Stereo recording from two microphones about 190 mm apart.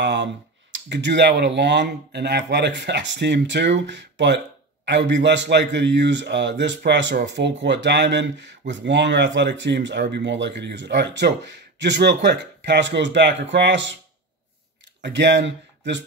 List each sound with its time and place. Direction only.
0.0 s a man's voice: 65° right (ahead or behind)
15.0 s speech: 65° right (ahead or behind)